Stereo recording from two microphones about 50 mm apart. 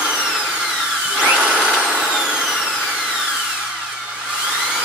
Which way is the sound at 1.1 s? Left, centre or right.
Right.